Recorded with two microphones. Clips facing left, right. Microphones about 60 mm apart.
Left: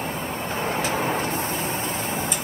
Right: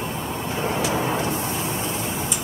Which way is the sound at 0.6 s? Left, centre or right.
Left.